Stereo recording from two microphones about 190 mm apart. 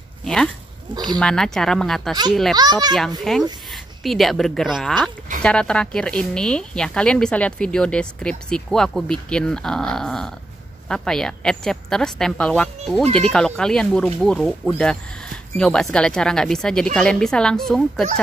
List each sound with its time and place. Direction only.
0.2 s a sound: 5° left (ahead or behind)
1.2 s speech: 5° left (ahead or behind)
2.5 s a child's voice: 20° right (ahead or behind)
3.3 s speech: centre (ahead or behind)